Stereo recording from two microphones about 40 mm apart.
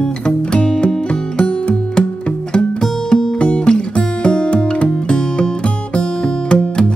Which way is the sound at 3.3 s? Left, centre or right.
Left.